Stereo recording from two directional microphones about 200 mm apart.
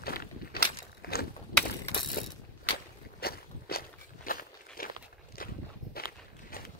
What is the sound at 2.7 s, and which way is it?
Walk, 50° left (ahead or behind).